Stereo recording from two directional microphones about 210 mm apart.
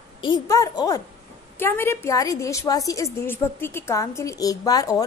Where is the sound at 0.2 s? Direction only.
20° left (ahead or behind).